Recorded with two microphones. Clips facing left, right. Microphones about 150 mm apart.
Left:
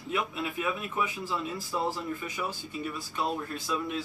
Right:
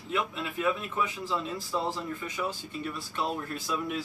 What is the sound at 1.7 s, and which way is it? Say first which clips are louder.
Speech: left 1 dB; 5° left (ahead or behind).